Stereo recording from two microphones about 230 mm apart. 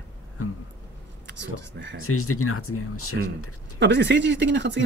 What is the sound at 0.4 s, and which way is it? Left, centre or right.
Speech, left.